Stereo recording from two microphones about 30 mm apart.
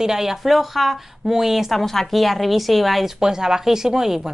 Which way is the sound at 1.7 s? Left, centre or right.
Centre.